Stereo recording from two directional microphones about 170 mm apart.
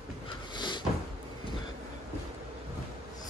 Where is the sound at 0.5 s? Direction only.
25° left (ahead or behind).